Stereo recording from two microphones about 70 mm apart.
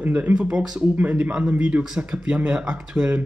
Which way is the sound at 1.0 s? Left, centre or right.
Right.